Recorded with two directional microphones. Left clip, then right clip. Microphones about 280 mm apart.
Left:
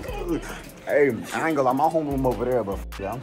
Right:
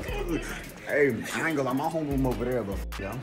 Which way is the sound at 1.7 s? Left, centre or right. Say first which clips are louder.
Left 8 dB; left.